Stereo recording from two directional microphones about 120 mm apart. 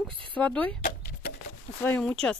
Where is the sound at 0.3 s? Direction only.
10° left (ahead or behind).